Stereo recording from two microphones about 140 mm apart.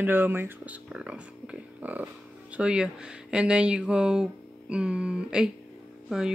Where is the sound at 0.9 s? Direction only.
5° right (ahead or behind).